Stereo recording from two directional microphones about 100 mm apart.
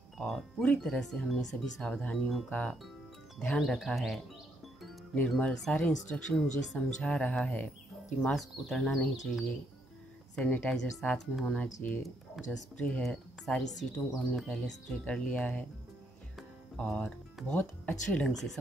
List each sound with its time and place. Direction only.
0.3 s speech: centre (ahead or behind)
5.4 s speech: 5° left (ahead or behind)
11.4 s speech: 15° left (ahead or behind)
12.4 s speech: centre (ahead or behind)
12.7 s speech: 15° left (ahead or behind)
13.0 s speech: 5° left (ahead or behind)
15.0 s speech: 10° left (ahead or behind)
16.7 s speech: 10° left (ahead or behind)
17.6 s speech: 20° left (ahead or behind)
18.2 s speech: centre (ahead or behind)